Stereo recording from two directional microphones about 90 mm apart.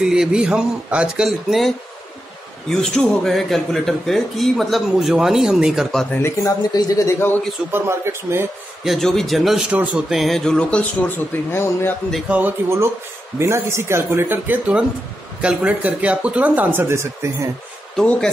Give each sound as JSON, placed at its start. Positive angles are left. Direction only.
{"t": 0.0, "sound": "speech", "side_deg": -10}
{"t": 2.7, "sound": "speech", "side_deg": 5}
{"t": 6.1, "sound": "a man's voice", "side_deg": 30}
{"t": 7.7, "sound": "speech", "side_deg": -30}
{"t": 8.8, "sound": "speech", "side_deg": 0}
{"t": 9.7, "sound": "speech", "side_deg": -10}
{"t": 11.5, "sound": "a man's voice", "side_deg": 25}
{"t": 12.3, "sound": "speech", "side_deg": -20}
{"t": 17.9, "sound": "a man's voice", "side_deg": 10}